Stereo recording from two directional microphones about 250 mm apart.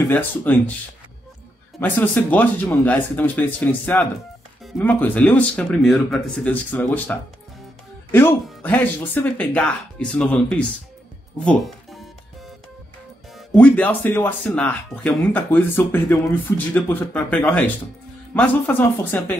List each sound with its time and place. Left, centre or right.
0.0 s speech: centre
1.8 s speech: centre
11.4 s music: centre
13.6 s speech: centre